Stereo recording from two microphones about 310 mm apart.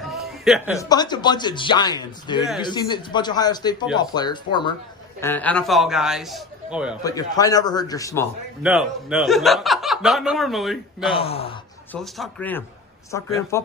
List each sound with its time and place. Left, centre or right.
0.0 s a sound: centre
0.7 s speech: centre
7.0 s speech: centre
8.6 s speech: centre
11.1 s speech: centre
11.9 s speech: centre